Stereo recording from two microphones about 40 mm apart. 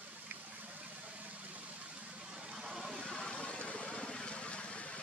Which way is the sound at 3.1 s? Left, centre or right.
Left.